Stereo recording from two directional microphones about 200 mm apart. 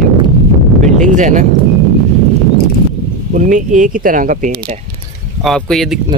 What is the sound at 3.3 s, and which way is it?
Speech, 40° right (ahead or behind).